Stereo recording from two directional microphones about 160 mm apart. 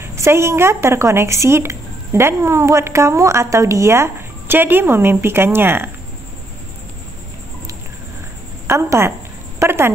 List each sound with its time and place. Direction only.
0.0 s speech: 15° right (ahead or behind)
8.6 s speech: 15° right (ahead or behind)